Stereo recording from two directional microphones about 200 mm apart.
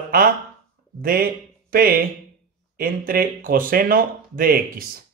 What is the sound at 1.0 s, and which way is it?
Speech, 45° right (ahead or behind).